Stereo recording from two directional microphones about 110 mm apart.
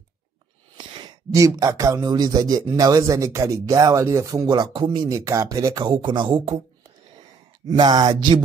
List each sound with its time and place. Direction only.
0.7 s sigh: 45° right (ahead or behind)
1.3 s a man's voice: 30° right (ahead or behind)
4.5 s speech: 45° right (ahead or behind)
5.1 s a man's voice: 30° right (ahead or behind)
5.9 s speech: 50° right (ahead or behind)
7.6 s a man's voice: 40° right (ahead or behind)